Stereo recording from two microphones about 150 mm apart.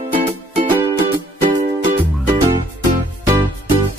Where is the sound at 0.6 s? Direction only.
30° right (ahead or behind).